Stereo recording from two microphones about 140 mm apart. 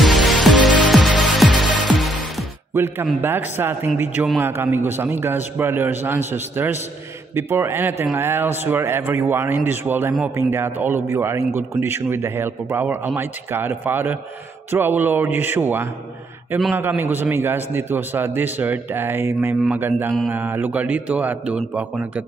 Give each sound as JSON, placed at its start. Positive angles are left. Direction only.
{"t": 0.0, "sound": "music", "side_deg": 0}
{"t": 2.7, "sound": "a man's voice", "side_deg": -15}